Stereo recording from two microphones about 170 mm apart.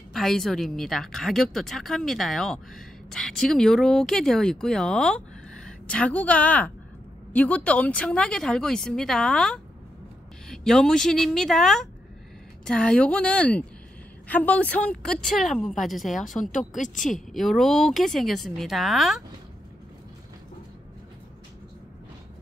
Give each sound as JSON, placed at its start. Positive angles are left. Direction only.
{"t": 0.1, "sound": "a woman's voice", "side_deg": 0}
{"t": 16.2, "sound": "speech", "side_deg": 50}
{"t": 17.0, "sound": "a woman's voice", "side_deg": 0}